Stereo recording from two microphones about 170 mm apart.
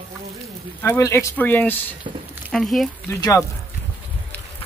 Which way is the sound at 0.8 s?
15° left (ahead or behind).